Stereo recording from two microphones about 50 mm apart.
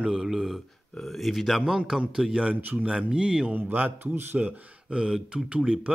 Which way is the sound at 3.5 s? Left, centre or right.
Right.